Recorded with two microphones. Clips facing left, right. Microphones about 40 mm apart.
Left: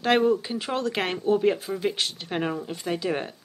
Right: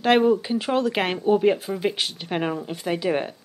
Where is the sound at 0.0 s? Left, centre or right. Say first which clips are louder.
Right 3 dB; centre.